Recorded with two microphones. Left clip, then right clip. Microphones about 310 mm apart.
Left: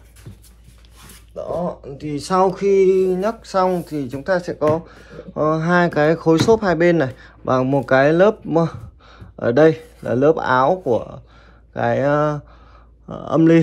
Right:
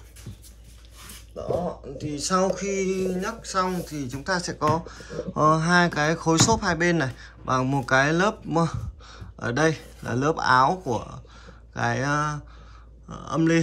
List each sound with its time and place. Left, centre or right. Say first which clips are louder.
2.0 s speech: left 7 dB; centre